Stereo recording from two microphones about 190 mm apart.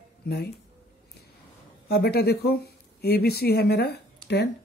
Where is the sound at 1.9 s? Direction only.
55° left (ahead or behind).